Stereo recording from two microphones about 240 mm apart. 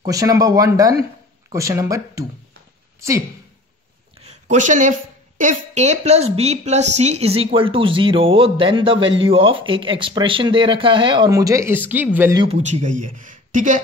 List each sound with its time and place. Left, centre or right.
0.0 s speech: centre
4.2 s a sound: right
5.4 s speech: right; by 12.4 s centre
12.4 s speech: right